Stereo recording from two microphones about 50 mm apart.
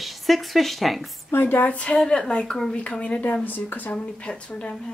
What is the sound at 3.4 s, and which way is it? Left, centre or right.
Speech, left.